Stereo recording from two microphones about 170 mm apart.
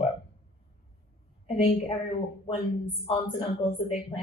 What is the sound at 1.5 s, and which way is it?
Speech, 35° left (ahead or behind).